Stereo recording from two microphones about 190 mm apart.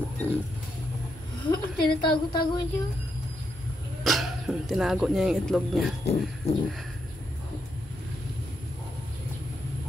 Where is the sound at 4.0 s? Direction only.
Centre (ahead or behind).